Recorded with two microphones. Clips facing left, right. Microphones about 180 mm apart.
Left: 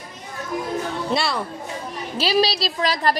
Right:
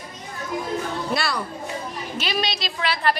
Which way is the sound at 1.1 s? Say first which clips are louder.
Left 4 dB; 25° left (ahead or behind).